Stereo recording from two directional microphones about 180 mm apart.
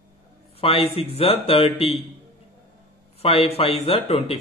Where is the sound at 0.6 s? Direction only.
30° left (ahead or behind).